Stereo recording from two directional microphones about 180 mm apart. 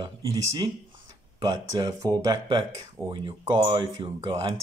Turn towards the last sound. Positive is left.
turn(degrees=-30)  # may be behind; listen again after turning